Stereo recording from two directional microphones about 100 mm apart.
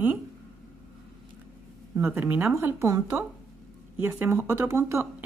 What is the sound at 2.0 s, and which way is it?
Speech, 30° right (ahead or behind).